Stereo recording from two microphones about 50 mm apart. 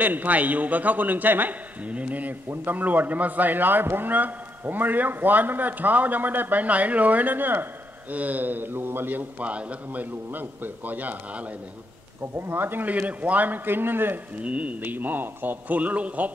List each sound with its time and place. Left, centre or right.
0.0 s a man's voice: right
1.9 s a man's voice: right
9.4 s a man's voice: right
10.3 s a man's voice: right
12.4 s speech: right
13.0 s a man's voice: right
14.4 s a man's voice: right